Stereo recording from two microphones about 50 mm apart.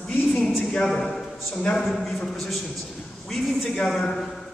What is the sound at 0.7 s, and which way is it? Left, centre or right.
A man's voice, centre.